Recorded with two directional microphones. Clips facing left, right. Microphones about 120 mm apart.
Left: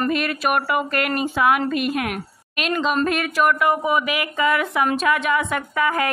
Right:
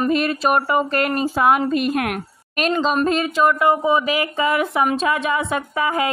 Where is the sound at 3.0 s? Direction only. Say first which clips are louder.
Right 2 dB; 25° right (ahead or behind).